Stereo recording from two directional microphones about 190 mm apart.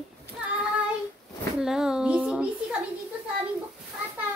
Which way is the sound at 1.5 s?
5° right (ahead or behind).